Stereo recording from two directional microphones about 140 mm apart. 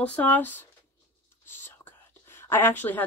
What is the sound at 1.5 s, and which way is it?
Whispering, 15° left (ahead or behind).